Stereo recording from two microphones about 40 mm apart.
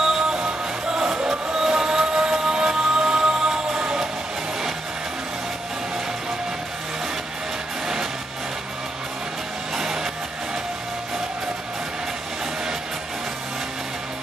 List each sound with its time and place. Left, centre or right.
0.0 s music: centre
1.6 s train: centre
3.1 s music: centre